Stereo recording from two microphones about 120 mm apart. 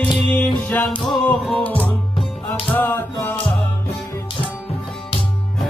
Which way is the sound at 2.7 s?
15° left (ahead or behind).